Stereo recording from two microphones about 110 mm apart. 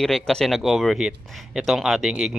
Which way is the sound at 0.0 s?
5° left (ahead or behind).